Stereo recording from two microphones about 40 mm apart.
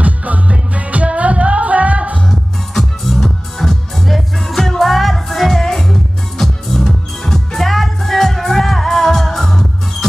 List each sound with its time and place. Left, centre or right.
0.0 s music: right
2.7 s music: centre